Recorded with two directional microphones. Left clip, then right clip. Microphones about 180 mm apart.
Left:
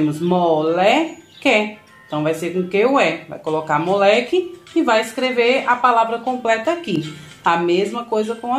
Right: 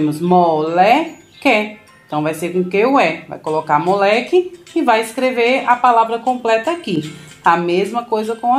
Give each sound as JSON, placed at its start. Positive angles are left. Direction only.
{"t": 0.3, "sound": "speech", "side_deg": -30}